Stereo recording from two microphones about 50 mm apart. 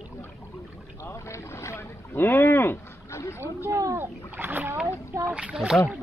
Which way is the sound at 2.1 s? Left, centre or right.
Left.